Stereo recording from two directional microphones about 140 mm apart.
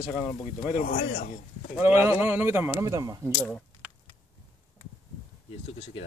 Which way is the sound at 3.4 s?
5° left (ahead or behind).